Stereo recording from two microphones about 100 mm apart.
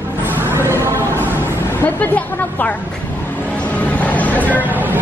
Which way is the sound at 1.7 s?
20° left (ahead or behind).